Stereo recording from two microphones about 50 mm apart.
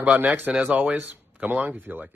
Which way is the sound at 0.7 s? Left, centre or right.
Right.